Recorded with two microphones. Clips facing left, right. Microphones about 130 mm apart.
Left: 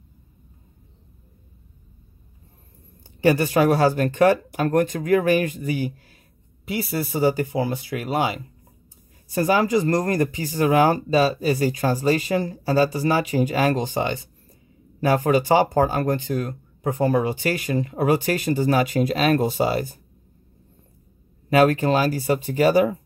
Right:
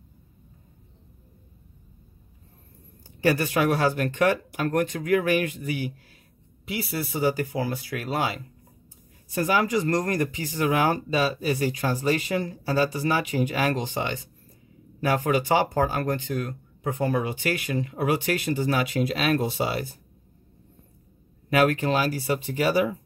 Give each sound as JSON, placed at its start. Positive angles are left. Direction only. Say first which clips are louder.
{"t": 3.2, "sound": "speech", "louder": "left 5 dB", "side_deg": 25}
{"t": 9.3, "sound": "speech", "louder": "left 4 dB", "side_deg": 35}
{"t": 21.5, "sound": "speech", "louder": "left 4 dB", "side_deg": 35}